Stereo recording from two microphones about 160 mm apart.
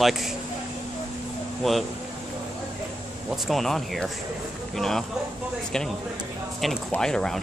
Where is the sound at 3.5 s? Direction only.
Centre (ahead or behind).